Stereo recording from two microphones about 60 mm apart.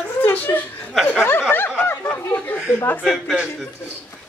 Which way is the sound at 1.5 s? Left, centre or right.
Left.